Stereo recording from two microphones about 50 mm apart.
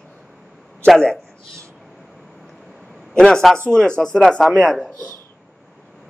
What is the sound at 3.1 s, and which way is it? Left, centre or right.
A man's voice, centre.